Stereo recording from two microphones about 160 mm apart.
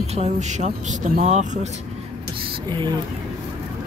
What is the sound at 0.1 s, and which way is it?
Speech, 45° right (ahead or behind).